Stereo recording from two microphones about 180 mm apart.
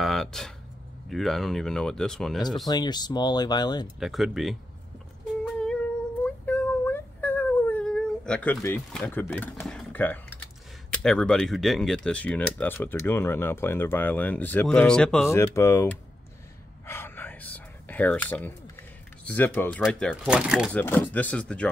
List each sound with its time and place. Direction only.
0.0 s a sound: centre (ahead or behind)
1.0 s speech: centre (ahead or behind)
2.7 s speech: 25° left (ahead or behind)
4.0 s speech: centre (ahead or behind)
5.6 s a sound: 5° left (ahead or behind)
8.9 s speech: 10° left (ahead or behind)
15.2 s speech: 15° left (ahead or behind)
16.8 s whispering: 10° left (ahead or behind)
19.2 s speech: 10° left (ahead or behind)
20.7 s speech: 10° left (ahead or behind)